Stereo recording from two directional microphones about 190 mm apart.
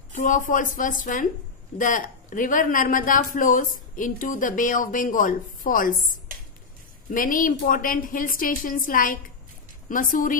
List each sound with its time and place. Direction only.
0.1 s speech: 45° left (ahead or behind)
7.1 s speech: 45° left (ahead or behind)